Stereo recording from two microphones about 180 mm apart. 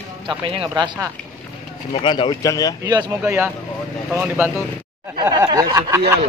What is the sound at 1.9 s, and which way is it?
Speech, 25° left (ahead or behind).